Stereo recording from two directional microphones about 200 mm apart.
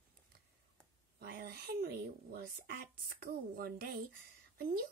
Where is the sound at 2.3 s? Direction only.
50° right (ahead or behind).